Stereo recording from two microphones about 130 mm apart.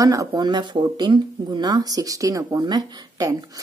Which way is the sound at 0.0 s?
25° right (ahead or behind).